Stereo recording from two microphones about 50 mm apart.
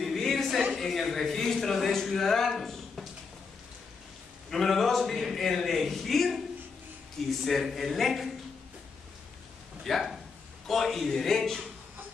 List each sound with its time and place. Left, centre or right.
0.0 s a sound: centre
4.5 s a man's voice: centre
9.8 s a man's voice: centre